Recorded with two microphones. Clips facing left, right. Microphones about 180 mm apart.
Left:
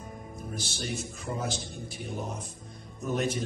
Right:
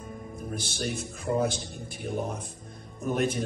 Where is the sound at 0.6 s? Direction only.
55° right (ahead or behind).